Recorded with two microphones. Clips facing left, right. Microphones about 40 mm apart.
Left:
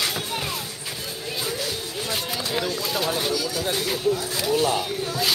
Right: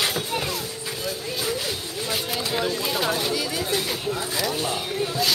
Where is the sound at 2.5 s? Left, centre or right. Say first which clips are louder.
Right 1 dB; centre.